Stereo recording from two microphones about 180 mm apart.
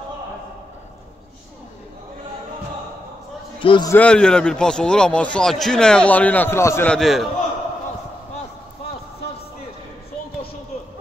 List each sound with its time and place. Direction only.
3.6 s a man's voice: 25° left (ahead or behind)
3.9 s a man's voice: 5° left (ahead or behind)